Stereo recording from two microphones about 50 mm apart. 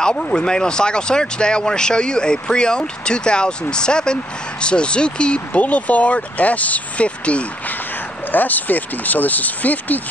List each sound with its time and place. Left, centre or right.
0.0 s speech: centre
8.3 s speech: left